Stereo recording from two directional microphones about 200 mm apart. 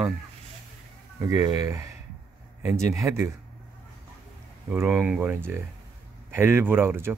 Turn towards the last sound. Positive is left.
turn(degrees=-10)  # may be behind; listen again after turning